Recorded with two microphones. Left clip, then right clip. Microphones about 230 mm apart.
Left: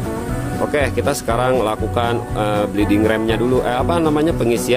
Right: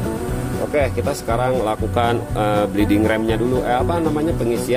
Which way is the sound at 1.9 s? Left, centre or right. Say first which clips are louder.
Even; centre.